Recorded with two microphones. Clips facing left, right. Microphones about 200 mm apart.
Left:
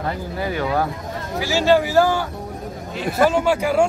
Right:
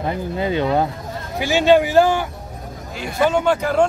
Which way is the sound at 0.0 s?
20° right (ahead or behind).